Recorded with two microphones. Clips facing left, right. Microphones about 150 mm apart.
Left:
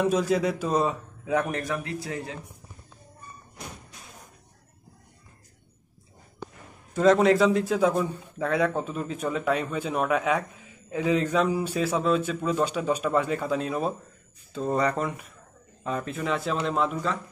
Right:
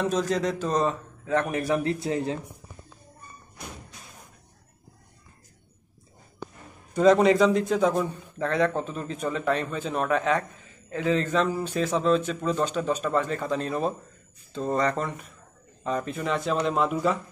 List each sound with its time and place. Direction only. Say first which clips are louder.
0.0 s a man's voice: left 2 dB; 10° left (ahead or behind)
1.5 s a man's voice: right 4 dB; 10° right (ahead or behind)
1.8 s a man's voice: right 6 dB; 30° right (ahead or behind)
6.9 s a man's voice: right 1 dB; centre (ahead or behind)